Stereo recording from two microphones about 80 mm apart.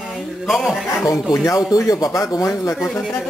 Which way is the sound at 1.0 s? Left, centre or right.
Left.